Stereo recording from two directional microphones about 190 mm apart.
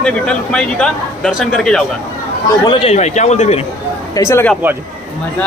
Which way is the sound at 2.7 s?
30° left (ahead or behind).